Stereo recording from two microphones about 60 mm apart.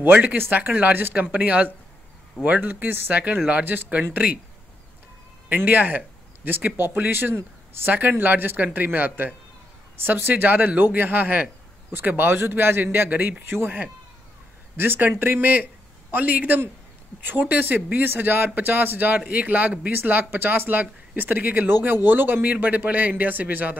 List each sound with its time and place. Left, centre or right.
0.0 s speech: right
3.6 s speech: right
5.6 s speech: right
13.1 s speech: right
14.8 s a man's voice: right
22.5 s speech: right